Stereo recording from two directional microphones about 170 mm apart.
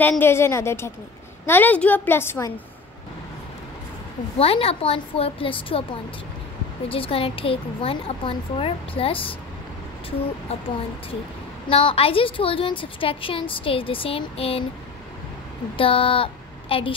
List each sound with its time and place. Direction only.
0.0 s a woman's voice: 10° left (ahead or behind)
4.4 s a woman's voice: 35° left (ahead or behind)
6.9 s a woman's voice: 35° left (ahead or behind)
11.6 s a woman's voice: 30° left (ahead or behind)
15.8 s speech: 30° left (ahead or behind)